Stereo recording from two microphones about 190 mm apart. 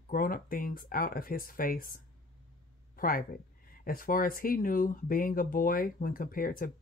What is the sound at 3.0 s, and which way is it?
Speech, 45° left (ahead or behind).